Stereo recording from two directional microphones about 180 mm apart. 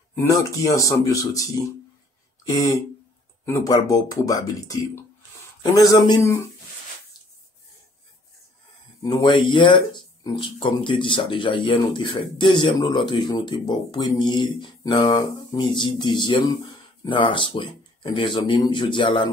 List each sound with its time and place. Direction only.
0.1 s speech: 15° left (ahead or behind)
9.0 s speech: 25° left (ahead or behind)